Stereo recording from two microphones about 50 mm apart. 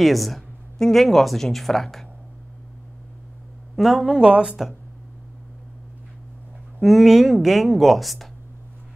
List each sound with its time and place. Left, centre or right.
0.0 s speech: centre
3.7 s speech: centre
4.1 s speech: right
6.8 s speech: centre